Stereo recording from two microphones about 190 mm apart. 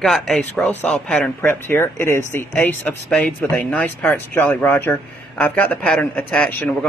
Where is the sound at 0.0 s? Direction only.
Centre (ahead or behind).